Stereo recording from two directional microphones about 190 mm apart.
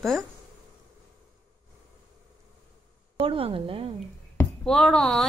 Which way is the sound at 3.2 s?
30° right (ahead or behind).